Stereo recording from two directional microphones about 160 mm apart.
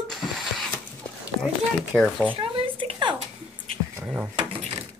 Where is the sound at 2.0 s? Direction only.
5° left (ahead or behind).